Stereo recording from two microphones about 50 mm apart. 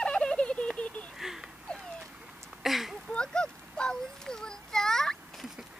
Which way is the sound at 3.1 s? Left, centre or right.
Centre.